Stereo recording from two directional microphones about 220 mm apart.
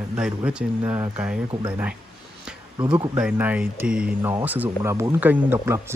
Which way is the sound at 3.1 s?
5° right (ahead or behind).